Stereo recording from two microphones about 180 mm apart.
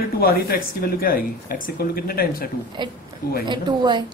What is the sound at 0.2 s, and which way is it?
Speech, 55° left (ahead or behind).